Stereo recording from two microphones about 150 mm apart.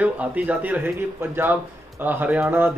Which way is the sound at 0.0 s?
10° right (ahead or behind).